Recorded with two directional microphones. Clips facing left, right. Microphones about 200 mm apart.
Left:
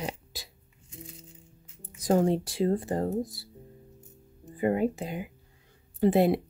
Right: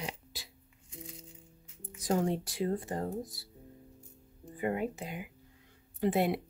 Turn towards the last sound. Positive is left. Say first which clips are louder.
# left 7 dB
turn(degrees=30)  # may be behind; listen again after turning